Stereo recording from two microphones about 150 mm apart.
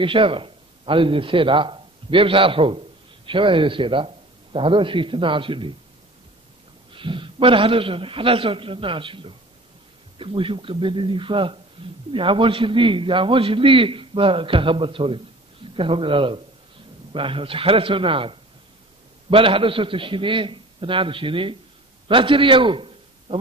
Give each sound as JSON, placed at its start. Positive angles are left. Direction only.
{"t": 0.0, "sound": "a man's voice", "side_deg": -35}
{"t": 6.9, "sound": "a man's voice", "side_deg": -35}